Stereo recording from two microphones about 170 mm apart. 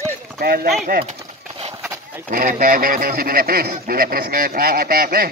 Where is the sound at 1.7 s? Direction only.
15° right (ahead or behind).